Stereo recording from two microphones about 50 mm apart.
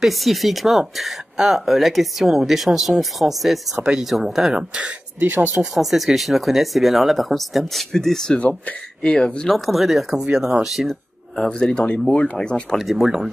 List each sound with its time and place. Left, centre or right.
0.0 s speech: centre
4.6 s speech: right
5.2 s speech: right
5.6 s speech: centre
8.4 s speech: left
9.5 s speech: centre
11.5 s speech: centre
12.7 s speech: centre